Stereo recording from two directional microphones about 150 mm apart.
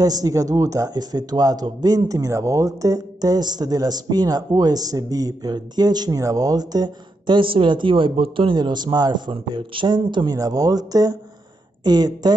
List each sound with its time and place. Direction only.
0.0 s a man's voice: 25° right (ahead or behind)